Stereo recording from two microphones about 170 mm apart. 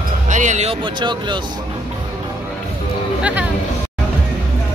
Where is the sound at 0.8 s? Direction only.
25° right (ahead or behind).